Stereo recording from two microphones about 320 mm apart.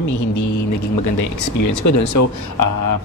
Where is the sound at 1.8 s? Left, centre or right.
Left.